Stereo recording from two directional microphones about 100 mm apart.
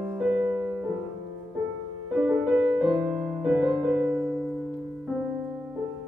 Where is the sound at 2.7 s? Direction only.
5° right (ahead or behind).